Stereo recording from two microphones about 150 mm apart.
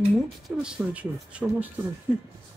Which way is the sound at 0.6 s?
5° right (ahead or behind).